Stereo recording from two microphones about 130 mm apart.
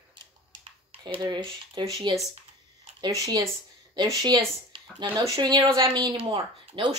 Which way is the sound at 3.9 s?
35° right (ahead or behind).